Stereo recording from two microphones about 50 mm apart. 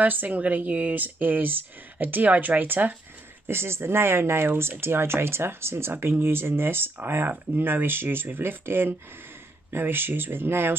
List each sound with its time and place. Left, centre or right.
0.0 s speech: right
3.4 s speech: right